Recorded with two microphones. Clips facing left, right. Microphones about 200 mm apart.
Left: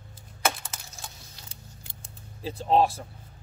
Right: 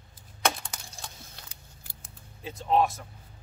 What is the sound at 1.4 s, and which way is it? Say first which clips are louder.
Keys jangling: left 4 dB; 30° left (ahead or behind).